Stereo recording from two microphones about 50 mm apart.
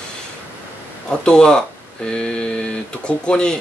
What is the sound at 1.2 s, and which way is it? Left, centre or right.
Speech, centre.